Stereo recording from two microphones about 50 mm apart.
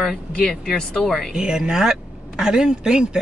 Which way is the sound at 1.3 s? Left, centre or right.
Centre.